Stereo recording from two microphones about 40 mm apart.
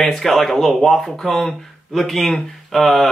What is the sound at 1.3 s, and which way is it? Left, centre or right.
Speech, centre.